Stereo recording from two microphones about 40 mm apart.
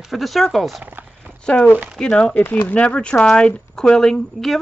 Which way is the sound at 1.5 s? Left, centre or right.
Left.